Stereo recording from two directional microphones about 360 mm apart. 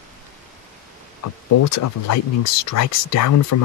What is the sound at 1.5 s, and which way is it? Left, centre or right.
Speech, left.